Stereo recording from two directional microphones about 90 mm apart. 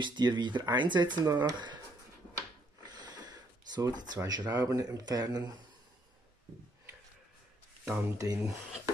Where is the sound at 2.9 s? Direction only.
50° right (ahead or behind).